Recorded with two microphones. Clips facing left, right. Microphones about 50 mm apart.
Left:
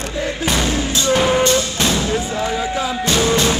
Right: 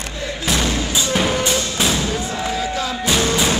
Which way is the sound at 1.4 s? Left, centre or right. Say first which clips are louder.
Left 3 dB; centre.